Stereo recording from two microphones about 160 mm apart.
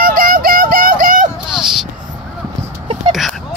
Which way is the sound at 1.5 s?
5° right (ahead or behind).